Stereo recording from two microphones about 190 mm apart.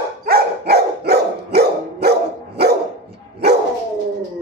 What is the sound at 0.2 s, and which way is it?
Dog, 55° right (ahead or behind).